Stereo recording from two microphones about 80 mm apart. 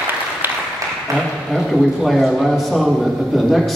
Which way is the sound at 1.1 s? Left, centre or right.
Right.